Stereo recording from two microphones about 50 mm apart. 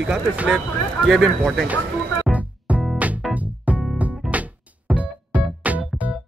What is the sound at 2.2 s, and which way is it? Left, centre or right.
Music, right.